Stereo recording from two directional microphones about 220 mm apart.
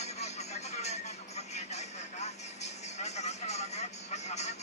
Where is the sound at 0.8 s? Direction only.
30° left (ahead or behind).